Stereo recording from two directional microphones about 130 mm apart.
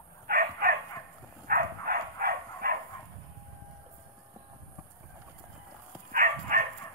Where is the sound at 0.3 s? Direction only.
90° right.